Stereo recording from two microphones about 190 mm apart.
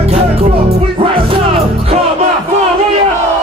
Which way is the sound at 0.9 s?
30° right (ahead or behind).